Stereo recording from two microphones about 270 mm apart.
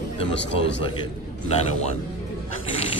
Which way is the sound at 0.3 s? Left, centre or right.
Left.